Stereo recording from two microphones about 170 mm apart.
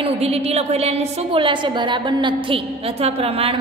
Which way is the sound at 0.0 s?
35° right (ahead or behind).